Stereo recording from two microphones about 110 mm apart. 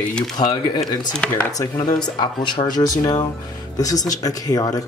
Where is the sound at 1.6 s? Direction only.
35° left (ahead or behind).